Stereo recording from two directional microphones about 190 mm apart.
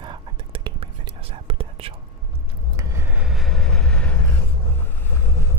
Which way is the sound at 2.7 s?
10° right (ahead or behind).